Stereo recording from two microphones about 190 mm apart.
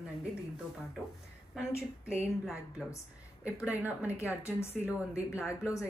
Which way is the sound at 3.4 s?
5° right (ahead or behind).